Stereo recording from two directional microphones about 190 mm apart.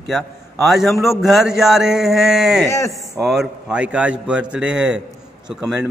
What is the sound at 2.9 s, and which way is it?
Speech, centre (ahead or behind).